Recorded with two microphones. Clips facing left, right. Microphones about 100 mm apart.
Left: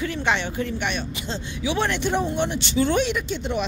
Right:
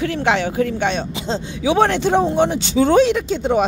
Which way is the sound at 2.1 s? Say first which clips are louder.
Right 8 dB; 90° right.